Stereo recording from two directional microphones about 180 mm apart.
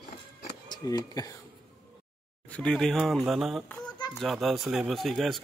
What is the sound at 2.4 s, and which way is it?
A man's voice, 5° left (ahead or behind).